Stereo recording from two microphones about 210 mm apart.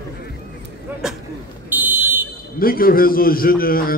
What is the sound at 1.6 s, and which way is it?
Fire alarm, 10° right (ahead or behind).